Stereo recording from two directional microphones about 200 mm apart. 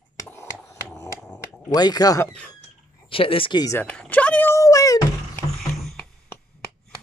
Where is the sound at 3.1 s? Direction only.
25° left (ahead or behind).